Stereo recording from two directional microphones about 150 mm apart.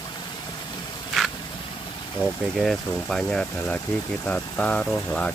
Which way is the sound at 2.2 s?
Centre (ahead or behind).